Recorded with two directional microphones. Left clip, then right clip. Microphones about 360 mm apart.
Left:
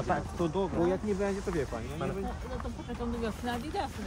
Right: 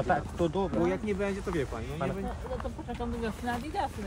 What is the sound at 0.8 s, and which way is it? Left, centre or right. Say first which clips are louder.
Speech: even; right.